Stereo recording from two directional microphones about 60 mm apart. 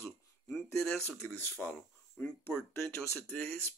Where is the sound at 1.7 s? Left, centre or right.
Left.